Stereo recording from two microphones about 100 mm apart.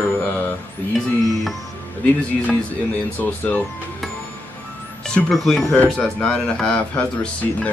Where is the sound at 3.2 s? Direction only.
15° left (ahead or behind).